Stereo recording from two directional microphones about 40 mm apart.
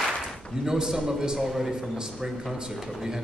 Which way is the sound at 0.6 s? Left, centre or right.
Centre.